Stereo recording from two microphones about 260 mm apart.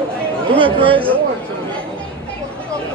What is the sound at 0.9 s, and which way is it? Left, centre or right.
Speech, centre.